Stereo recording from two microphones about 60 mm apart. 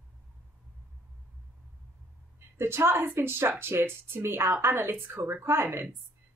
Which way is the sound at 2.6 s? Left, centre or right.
Right.